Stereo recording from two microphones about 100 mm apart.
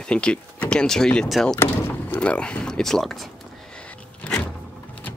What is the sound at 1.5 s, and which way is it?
Speech, 20° left (ahead or behind).